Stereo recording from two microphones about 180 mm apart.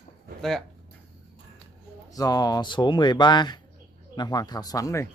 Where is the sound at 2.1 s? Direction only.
20° left (ahead or behind).